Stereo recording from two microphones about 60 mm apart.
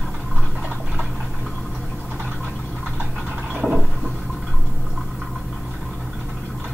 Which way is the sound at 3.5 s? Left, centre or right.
Centre.